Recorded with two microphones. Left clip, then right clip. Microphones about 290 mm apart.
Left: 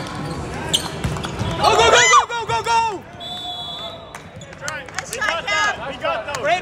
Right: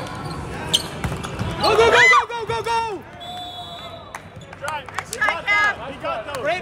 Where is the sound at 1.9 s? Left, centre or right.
Centre.